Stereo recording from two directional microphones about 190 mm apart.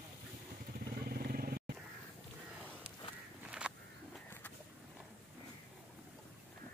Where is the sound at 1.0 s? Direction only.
50° right (ahead or behind).